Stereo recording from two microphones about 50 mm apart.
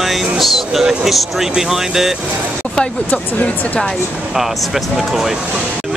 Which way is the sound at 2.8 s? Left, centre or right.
Left.